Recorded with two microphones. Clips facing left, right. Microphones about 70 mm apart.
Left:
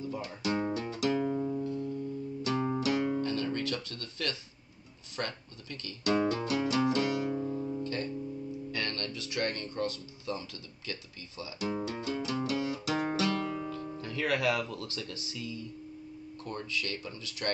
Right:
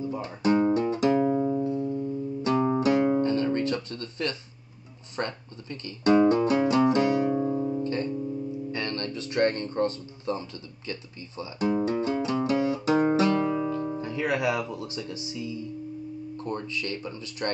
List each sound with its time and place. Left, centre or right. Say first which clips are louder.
0.0 s speech: right 7 dB; right
0.7 s music: right 8 dB; right
1.6 s music: right 7 dB; right
2.5 s music: right 7 dB; right
2.8 s guitar: right 7 dB; right
5.1 s speech: right 5 dB; right
6.2 s music: right 9 dB; right
7.7 s music: right 6 dB; right
12.4 s guitar: right 8 dB; right
13.9 s speech: right 4 dB; right